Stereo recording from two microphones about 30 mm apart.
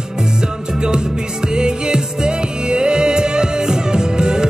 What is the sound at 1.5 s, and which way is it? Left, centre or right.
Music, right.